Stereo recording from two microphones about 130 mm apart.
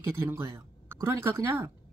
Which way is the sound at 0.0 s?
20° right (ahead or behind).